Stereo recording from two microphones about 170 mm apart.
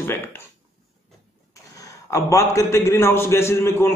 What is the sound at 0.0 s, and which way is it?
Speech, 15° left (ahead or behind).